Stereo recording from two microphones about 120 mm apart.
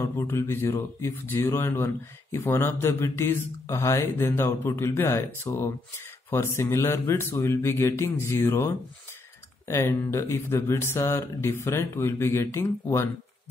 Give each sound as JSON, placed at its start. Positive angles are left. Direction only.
{"t": 0.0, "sound": "speech", "side_deg": 20}